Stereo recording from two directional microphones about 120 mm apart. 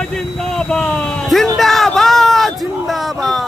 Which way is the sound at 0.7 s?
5° left (ahead or behind).